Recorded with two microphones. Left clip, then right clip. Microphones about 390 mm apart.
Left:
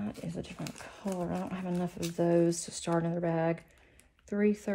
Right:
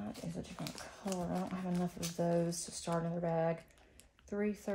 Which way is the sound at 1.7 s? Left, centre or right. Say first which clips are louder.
Left 5 dB; left.